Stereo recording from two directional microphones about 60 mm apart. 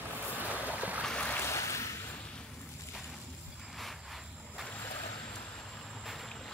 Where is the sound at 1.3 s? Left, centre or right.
Left.